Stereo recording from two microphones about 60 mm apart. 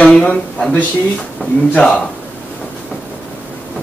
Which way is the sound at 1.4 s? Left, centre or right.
Left.